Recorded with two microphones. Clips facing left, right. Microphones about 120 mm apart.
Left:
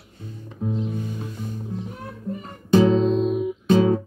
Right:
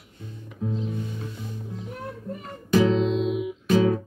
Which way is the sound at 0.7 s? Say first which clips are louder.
Left 3 dB; 30° left (ahead or behind).